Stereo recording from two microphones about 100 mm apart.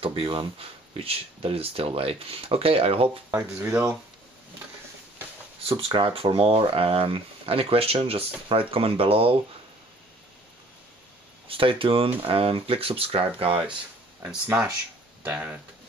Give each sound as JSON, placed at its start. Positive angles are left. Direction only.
{"t": 0.0, "sound": "speech", "side_deg": -65}
{"t": 3.3, "sound": "speech", "side_deg": -20}
{"t": 5.6, "sound": "speech", "side_deg": -75}
{"t": 11.4, "sound": "speech", "side_deg": -60}
{"t": 14.2, "sound": "speech", "side_deg": -10}